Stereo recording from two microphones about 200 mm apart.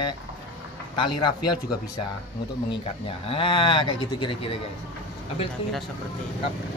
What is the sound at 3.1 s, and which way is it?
Speech, 25° left (ahead or behind).